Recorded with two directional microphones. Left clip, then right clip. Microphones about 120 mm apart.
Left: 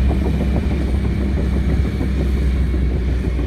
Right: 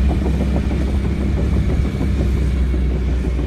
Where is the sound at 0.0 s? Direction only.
30° left (ahead or behind).